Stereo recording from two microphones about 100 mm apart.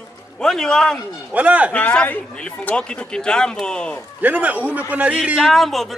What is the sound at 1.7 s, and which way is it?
A man's voice, 15° left (ahead or behind).